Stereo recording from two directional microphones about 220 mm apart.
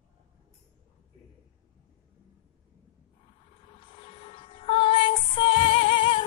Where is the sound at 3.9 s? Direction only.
25° left (ahead or behind).